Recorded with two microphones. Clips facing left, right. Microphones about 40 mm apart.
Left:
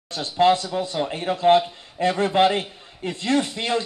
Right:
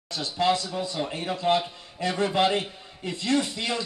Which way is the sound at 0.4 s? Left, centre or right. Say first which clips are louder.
Left 6 dB; left.